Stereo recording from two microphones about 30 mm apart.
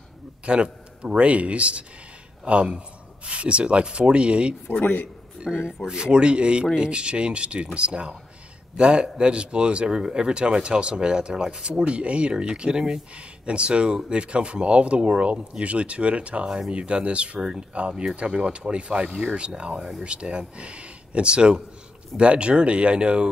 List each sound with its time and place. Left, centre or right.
0.5 s a man's voice: right
13.1 s speech: right
17.4 s speech: right
17.7 s speech: right